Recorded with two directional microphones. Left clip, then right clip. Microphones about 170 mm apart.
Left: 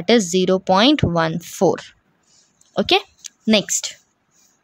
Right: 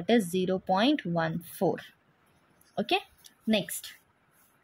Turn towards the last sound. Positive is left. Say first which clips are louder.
# left 12 dB
turn(degrees=40)  # may be behind; listen again after turning